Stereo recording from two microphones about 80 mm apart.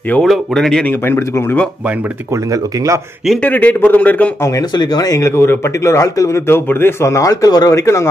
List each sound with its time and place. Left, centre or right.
0.2 s speech: centre
0.8 s speech: left
2.5 s speech: right
3.4 s speech: centre
4.6 s speech: left
5.2 s speech: left
7.8 s speech: left